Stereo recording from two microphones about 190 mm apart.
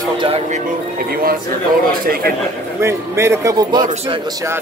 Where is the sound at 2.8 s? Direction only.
15° right (ahead or behind).